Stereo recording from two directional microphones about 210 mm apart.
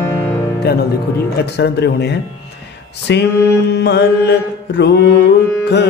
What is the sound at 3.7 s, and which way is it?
Mantra, 55° left (ahead or behind).